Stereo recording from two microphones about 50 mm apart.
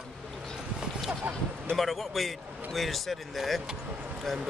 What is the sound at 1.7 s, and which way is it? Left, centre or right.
A man's voice, centre.